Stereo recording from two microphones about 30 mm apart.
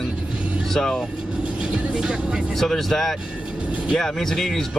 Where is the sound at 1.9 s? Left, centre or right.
Centre.